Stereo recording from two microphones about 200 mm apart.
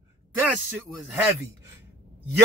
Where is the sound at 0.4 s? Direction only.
10° right (ahead or behind).